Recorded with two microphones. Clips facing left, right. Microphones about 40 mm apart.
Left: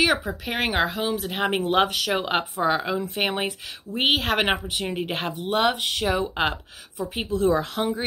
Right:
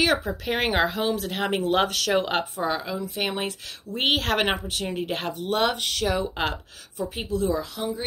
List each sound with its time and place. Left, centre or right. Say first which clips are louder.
0.0 s speech: left 1 dB; centre
7.2 s speech: left 4 dB; left